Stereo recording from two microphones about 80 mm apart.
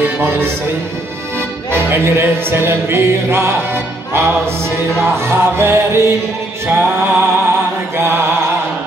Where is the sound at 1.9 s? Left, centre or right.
Right.